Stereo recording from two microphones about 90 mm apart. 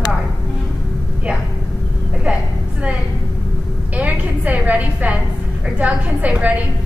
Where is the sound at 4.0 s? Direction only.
15° right (ahead or behind).